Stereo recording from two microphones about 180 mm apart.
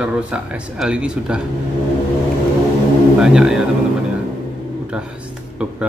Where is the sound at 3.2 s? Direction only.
5° right (ahead or behind).